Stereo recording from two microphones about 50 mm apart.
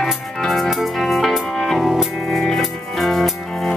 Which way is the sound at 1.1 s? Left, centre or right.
Centre.